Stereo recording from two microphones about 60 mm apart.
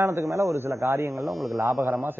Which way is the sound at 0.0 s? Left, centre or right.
Right.